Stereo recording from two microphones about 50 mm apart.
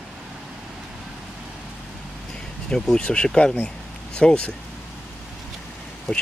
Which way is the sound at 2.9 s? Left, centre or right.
Left.